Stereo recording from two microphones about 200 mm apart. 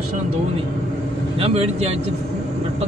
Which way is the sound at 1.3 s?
30° right (ahead or behind).